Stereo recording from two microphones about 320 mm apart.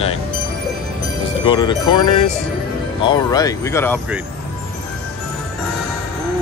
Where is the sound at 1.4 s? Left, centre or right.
Centre.